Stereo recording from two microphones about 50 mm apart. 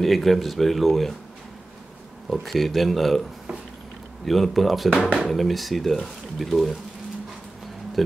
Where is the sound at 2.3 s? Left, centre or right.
Centre.